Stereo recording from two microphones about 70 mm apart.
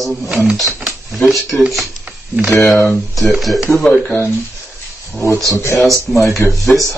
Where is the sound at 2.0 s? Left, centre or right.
Centre.